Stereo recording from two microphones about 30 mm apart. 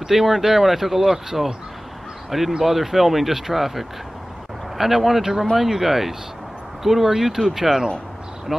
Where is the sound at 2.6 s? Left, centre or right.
Centre.